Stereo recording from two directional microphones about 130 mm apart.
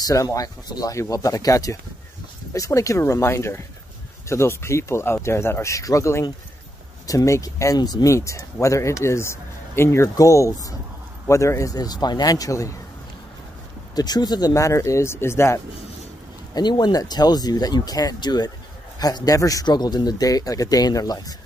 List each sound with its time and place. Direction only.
0.0 s speech: 25° left (ahead or behind)
13.9 s speech: 30° left (ahead or behind)
16.5 s speech: 35° left (ahead or behind)